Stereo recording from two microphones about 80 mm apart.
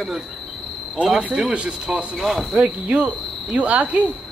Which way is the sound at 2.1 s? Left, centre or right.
Centre.